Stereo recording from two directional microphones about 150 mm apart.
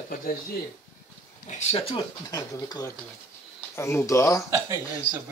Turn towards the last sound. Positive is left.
turn(degrees=-15)  # may be behind; listen again after turning